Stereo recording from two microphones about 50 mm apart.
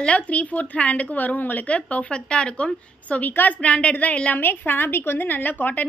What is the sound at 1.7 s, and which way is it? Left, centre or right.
A woman's voice, left.